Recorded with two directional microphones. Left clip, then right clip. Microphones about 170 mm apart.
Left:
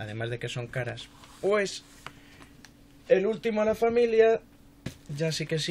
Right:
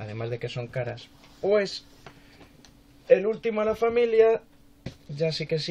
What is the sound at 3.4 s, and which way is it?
Speech, 30° left (ahead or behind).